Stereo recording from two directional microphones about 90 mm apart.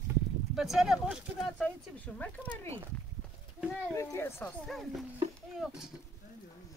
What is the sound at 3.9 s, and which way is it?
Speech, 30° left (ahead or behind).